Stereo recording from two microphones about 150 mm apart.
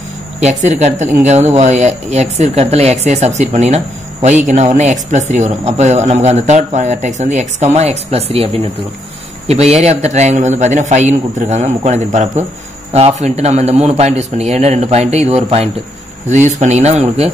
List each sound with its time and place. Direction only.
0.4 s speech: 50° right (ahead or behind)
9.5 s speech: 45° right (ahead or behind)